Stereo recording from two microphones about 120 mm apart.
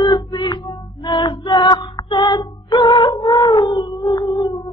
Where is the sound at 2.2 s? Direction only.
40° left (ahead or behind).